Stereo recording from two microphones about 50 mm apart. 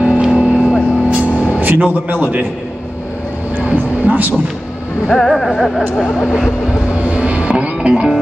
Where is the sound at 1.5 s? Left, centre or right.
Right.